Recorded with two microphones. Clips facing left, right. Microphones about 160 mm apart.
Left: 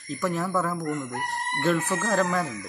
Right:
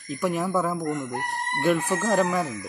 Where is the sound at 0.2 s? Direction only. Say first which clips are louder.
Right 2 dB; 15° right (ahead or behind).